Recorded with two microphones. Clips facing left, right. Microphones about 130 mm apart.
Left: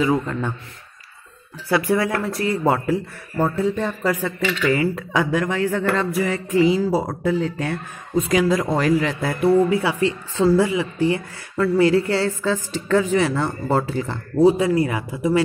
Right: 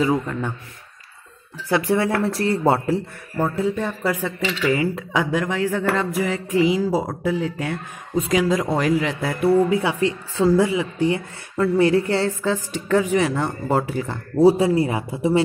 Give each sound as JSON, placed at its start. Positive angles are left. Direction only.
{"t": 0.1, "sound": "speech", "side_deg": -15}
{"t": 1.7, "sound": "speech", "side_deg": -25}
{"t": 3.5, "sound": "speech", "side_deg": -10}
{"t": 14.4, "sound": "speech", "side_deg": -35}